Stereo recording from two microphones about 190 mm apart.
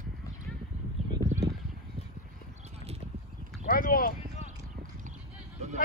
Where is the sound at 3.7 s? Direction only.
50° left (ahead or behind).